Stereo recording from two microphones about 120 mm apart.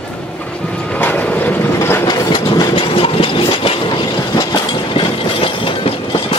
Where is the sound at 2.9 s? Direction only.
50° left (ahead or behind).